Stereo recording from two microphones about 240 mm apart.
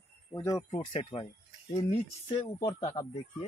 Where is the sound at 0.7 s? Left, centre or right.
Left.